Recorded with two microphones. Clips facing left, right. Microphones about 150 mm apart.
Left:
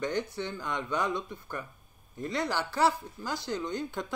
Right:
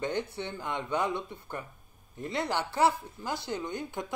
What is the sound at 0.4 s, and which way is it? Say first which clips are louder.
Speech: left 1 dB; 20° right (ahead or behind).